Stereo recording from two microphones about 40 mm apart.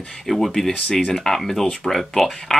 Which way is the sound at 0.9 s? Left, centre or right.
Left.